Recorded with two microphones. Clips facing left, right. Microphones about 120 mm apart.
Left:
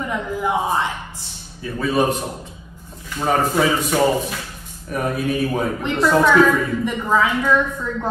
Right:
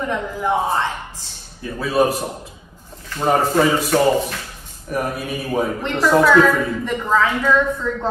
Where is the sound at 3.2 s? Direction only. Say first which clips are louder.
Right 2 dB; centre (ahead or behind).